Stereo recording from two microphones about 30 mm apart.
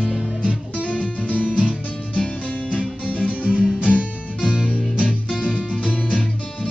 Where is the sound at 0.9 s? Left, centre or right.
Left.